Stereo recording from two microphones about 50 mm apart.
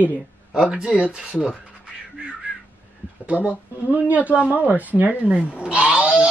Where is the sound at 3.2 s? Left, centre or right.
Right.